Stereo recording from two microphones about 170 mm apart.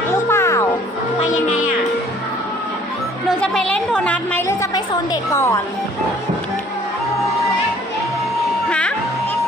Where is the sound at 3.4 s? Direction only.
5° left (ahead or behind).